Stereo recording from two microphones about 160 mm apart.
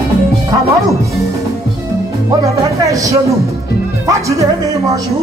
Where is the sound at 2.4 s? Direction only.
20° right (ahead or behind).